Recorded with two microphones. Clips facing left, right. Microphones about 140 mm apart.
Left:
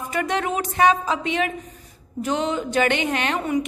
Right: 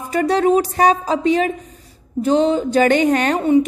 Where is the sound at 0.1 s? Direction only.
35° right (ahead or behind).